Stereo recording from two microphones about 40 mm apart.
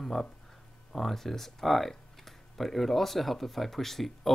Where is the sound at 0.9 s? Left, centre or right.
Centre.